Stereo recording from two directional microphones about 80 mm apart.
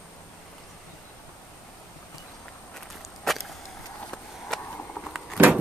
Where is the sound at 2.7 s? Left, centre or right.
Centre.